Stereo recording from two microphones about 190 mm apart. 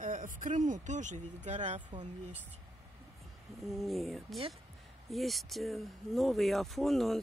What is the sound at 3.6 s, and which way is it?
Speech, centre (ahead or behind).